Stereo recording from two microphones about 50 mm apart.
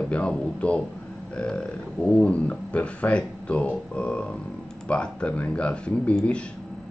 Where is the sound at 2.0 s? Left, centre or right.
Left.